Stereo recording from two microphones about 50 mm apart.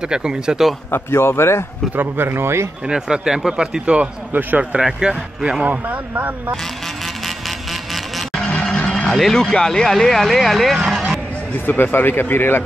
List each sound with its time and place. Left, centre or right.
0.1 s speech: centre
0.9 s speech: left
2.0 s speech: right
2.9 s speech: centre
4.3 s speech: right
5.0 s speech: centre
5.7 s speech: right
7.2 s vehicle: centre
8.9 s music: centre
9.2 s speech: centre
10.8 s music: centre
11.6 s speech: left